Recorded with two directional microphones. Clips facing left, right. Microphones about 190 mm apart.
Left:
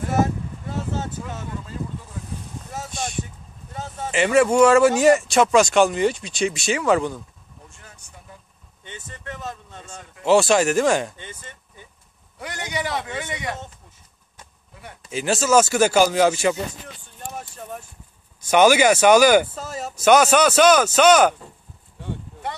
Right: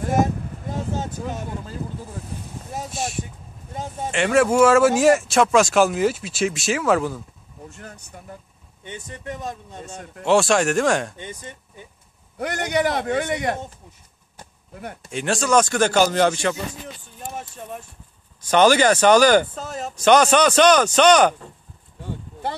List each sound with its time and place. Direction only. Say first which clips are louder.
0.1 s a sound: right 1 dB; 15° right (ahead or behind)
2.9 s speech: right 1 dB; centre (ahead or behind)
3.7 s speech: right 2 dB; 15° right (ahead or behind)
4.1 s speech: left 1 dB; centre (ahead or behind)
8.8 s speech: right 4 dB; 15° right (ahead or behind)
10.2 s speech: left 1 dB; centre (ahead or behind)
11.1 s speech: right 5 dB; 15° right (ahead or behind)
12.4 s a man's voice: right 7 dB; 60° right (ahead or behind)
15.0 s speech: left 1 dB; 5° left (ahead or behind)